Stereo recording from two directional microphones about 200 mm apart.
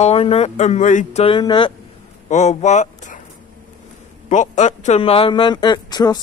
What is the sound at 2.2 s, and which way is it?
Speech, 35° left (ahead or behind).